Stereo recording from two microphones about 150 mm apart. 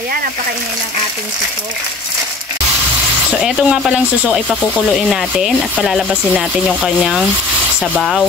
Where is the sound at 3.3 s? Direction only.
Centre (ahead or behind).